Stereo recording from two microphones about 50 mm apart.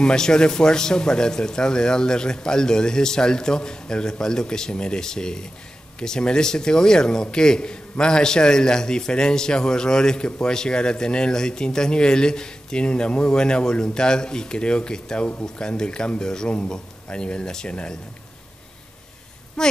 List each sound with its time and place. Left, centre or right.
0.0 s a man's voice: centre
19.6 s speech: centre